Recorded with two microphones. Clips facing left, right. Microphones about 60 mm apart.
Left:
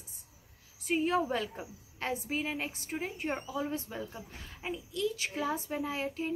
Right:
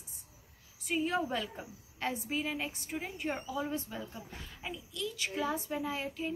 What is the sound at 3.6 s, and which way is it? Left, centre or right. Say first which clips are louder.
A woman's voice: left 1 dB; left.